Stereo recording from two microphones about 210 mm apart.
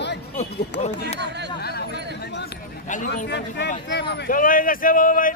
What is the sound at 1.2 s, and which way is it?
Speech, 55° right (ahead or behind).